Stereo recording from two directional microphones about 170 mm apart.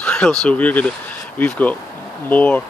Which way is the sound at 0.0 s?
5° left (ahead or behind).